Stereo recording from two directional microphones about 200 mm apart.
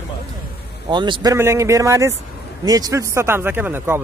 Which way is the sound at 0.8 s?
25° right (ahead or behind).